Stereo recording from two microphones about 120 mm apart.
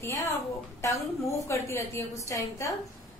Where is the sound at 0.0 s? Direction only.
25° left (ahead or behind).